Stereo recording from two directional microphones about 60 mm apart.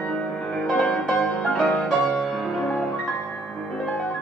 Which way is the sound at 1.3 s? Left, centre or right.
Centre.